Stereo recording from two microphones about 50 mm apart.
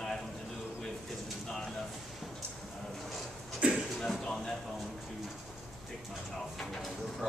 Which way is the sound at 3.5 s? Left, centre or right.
Right.